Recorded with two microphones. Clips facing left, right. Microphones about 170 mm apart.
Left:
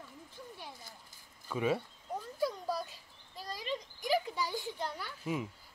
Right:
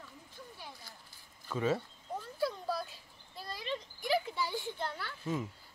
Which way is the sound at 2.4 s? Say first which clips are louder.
Even; 15° left (ahead or behind).